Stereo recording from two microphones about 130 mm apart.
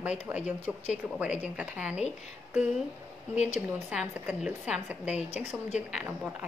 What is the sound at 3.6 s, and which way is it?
Speech, 10° right (ahead or behind).